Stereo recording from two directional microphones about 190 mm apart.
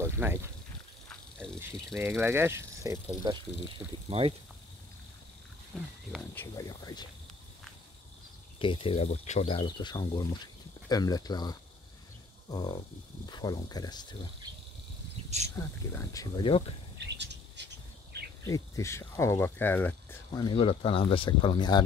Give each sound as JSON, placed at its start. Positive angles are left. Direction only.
{"t": 0.0, "sound": "snake", "side_deg": -10}
{"t": 1.0, "sound": "insect", "side_deg": 5}
{"t": 2.0, "sound": "speech", "side_deg": -10}
{"t": 5.7, "sound": "speech", "side_deg": 5}
{"t": 8.5, "sound": "speech", "side_deg": 25}
{"t": 15.2, "sound": "cricket", "side_deg": -35}
{"t": 15.9, "sound": "speech", "side_deg": 15}
{"t": 17.0, "sound": "bird", "side_deg": -65}
{"t": 18.4, "sound": "speech", "side_deg": 15}
{"t": 20.4, "sound": "speech", "side_deg": 30}